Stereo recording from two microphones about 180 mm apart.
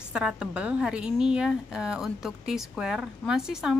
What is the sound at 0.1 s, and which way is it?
A woman's voice, 5° right (ahead or behind).